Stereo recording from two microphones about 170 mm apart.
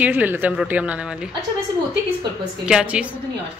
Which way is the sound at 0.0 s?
10° right (ahead or behind).